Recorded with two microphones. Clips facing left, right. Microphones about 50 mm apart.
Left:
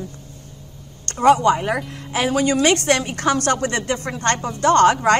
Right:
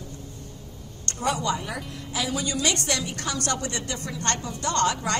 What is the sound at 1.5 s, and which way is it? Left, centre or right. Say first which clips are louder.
A woman's voice: left 9 dB; left.